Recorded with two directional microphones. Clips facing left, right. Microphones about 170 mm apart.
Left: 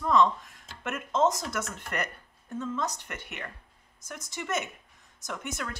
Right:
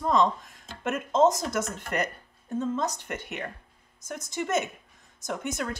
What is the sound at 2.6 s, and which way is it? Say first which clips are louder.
A woman's voice: right 4 dB; 45° right (ahead or behind).